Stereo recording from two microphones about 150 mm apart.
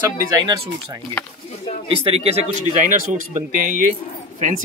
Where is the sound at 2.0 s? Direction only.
40° right (ahead or behind).